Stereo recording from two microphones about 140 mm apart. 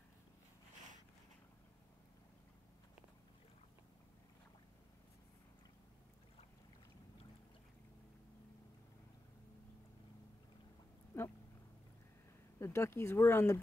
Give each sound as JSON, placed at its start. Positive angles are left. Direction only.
{"t": 11.1, "sound": "dog", "side_deg": 20}
{"t": 12.5, "sound": "speech", "side_deg": 20}